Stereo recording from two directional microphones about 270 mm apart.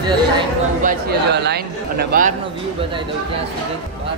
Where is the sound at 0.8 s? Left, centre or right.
Right.